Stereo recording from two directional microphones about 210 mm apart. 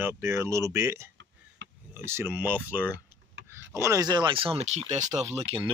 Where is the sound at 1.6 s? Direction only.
60° right (ahead or behind).